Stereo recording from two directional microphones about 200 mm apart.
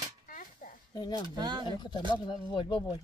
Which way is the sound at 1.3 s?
20° right (ahead or behind).